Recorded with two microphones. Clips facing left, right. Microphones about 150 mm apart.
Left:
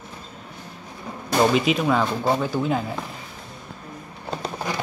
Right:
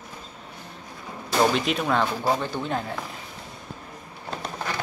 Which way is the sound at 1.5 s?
Centre (ahead or behind).